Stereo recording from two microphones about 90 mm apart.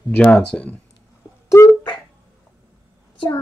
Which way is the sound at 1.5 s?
30° left (ahead or behind).